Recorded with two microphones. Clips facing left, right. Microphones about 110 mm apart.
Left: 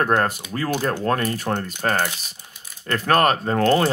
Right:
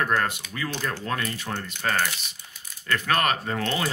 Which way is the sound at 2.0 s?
35° left (ahead or behind).